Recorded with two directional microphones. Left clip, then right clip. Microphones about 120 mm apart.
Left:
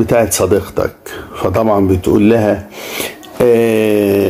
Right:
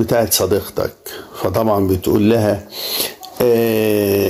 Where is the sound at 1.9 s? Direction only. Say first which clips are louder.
Left 4 dB; 25° right (ahead or behind).